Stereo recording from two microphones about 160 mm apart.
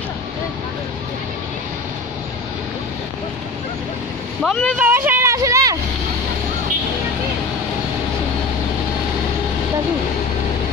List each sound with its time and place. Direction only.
4.4 s speech: 5° left (ahead or behind)
4.7 s speech: 10° right (ahead or behind)